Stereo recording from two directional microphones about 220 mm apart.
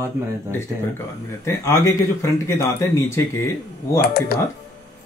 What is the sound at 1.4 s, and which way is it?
Speech, 10° left (ahead or behind).